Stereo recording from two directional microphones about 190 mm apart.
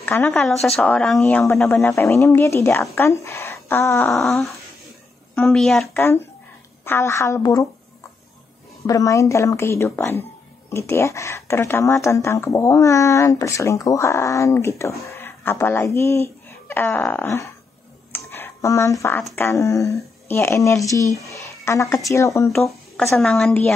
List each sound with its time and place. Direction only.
0.0 s speech: 10° left (ahead or behind)
4.1 s a woman's voice: centre (ahead or behind)
5.9 s speech: 10° left (ahead or behind)
8.8 s speech: 15° left (ahead or behind)
18.1 s a sound: 10° left (ahead or behind)
19.3 s speech: 15° left (ahead or behind)
23.1 s speech: centre (ahead or behind)